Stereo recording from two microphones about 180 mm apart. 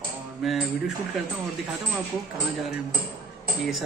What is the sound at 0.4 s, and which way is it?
Speech, centre (ahead or behind).